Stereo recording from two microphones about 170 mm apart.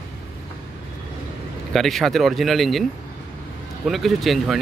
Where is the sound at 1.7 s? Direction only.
Centre (ahead or behind).